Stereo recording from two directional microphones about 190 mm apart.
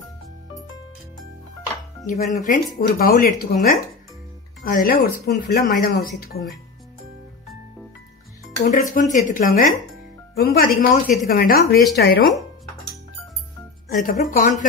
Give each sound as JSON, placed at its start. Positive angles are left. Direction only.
{"t": 2.0, "sound": "speech", "side_deg": 40}
{"t": 4.6, "sound": "speech", "side_deg": 50}
{"t": 8.5, "sound": "speech", "side_deg": 40}
{"t": 13.8, "sound": "speech", "side_deg": 45}